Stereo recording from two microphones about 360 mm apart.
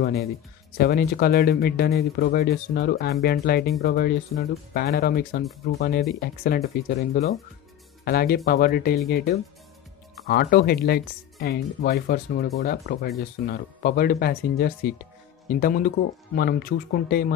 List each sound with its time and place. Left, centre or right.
0.0 s speech: left